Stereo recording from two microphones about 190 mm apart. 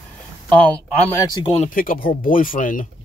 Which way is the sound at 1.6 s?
45° left (ahead or behind).